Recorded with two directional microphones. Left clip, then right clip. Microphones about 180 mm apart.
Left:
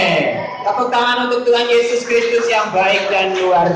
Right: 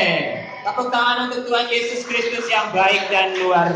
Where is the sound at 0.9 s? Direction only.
20° left (ahead or behind).